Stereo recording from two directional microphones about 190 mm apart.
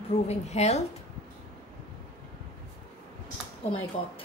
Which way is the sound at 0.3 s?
35° left (ahead or behind).